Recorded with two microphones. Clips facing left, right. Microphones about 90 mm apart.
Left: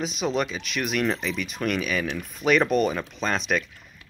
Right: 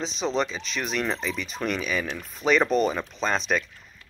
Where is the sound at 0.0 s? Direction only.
10° left (ahead or behind).